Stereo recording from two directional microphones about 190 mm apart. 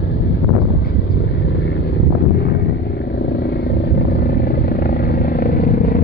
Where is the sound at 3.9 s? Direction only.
55° left (ahead or behind).